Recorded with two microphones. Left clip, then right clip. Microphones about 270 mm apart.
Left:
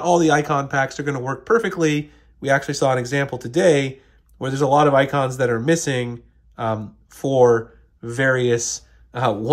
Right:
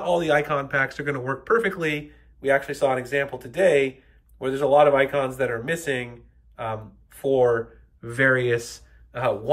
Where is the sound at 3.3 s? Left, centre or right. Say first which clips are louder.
Left 3 dB; centre.